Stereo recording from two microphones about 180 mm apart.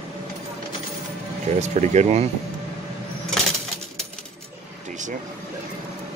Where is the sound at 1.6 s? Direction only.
40° right (ahead or behind).